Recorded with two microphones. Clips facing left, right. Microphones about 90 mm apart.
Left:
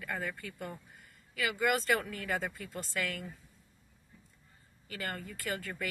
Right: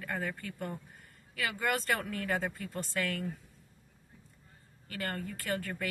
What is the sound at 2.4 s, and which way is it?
Speech, 40° right (ahead or behind).